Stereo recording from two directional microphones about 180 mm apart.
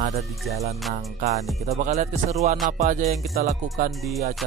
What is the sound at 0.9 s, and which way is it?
Music, 45° right (ahead or behind).